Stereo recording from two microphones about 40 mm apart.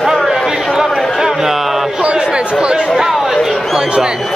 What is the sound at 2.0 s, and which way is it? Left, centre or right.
Chatter, right.